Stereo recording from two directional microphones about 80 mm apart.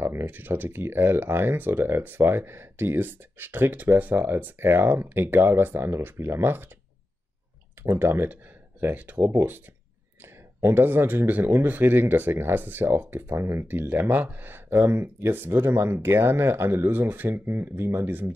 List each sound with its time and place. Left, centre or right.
0.0 s speech: right
7.8 s speech: right